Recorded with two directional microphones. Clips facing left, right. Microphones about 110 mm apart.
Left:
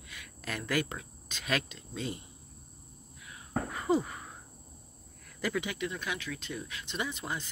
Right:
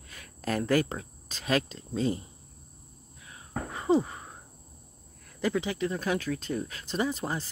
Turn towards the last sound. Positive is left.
turn(degrees=-35)  # may be behind; listen again after turning